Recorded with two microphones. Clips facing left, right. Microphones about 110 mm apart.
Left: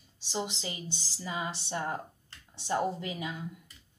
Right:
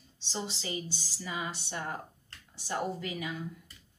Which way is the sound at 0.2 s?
15° left (ahead or behind).